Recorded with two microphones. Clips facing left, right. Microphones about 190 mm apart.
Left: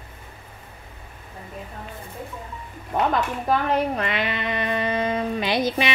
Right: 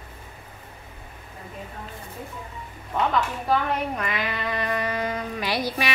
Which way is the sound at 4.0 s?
25° left (ahead or behind).